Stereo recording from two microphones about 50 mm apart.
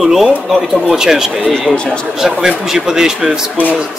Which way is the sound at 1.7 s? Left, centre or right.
Left.